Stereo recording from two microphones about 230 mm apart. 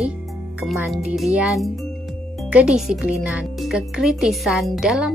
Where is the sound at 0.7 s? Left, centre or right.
Centre.